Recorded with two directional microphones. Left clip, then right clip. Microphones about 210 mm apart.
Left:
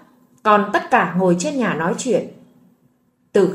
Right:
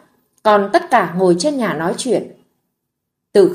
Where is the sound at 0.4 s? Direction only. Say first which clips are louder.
Right 3 dB; 30° right (ahead or behind).